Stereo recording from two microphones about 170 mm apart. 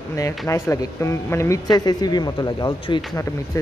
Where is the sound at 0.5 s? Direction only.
15° left (ahead or behind).